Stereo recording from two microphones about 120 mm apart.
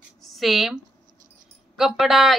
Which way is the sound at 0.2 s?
Centre (ahead or behind).